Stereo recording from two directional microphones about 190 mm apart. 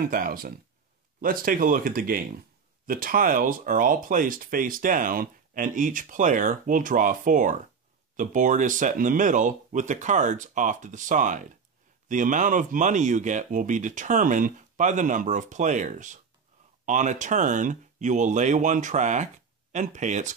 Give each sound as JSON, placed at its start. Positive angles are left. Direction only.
{"t": 0.0, "sound": "speech", "side_deg": -50}